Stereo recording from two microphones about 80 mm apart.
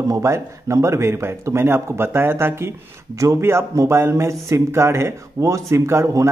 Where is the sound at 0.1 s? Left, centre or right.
Right.